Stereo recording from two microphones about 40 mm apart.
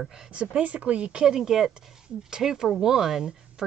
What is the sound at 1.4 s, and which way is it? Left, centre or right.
Speech, centre.